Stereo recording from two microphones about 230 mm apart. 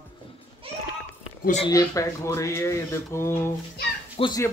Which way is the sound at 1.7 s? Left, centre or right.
Centre.